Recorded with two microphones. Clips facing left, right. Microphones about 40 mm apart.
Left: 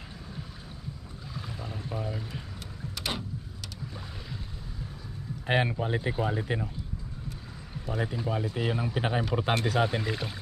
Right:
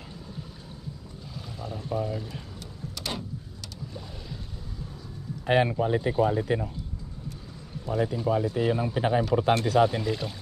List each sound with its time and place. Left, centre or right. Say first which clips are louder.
1.3 s pour: right 1 dB; centre
3.0 s vehicle: even; centre
5.5 s speech: right 4 dB; centre
7.8 s speech: right 5 dB; centre